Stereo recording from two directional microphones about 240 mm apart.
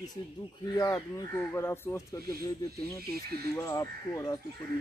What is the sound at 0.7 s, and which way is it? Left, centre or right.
Speech, centre.